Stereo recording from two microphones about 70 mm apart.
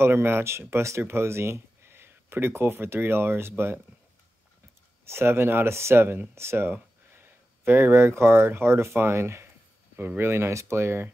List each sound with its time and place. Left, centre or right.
0.0 s speech: right
5.0 s speech: right
9.9 s speech: right